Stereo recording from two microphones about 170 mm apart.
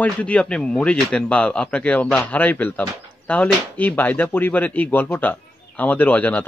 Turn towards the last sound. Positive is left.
turn(degrees=10)  # may be behind; listen again after turning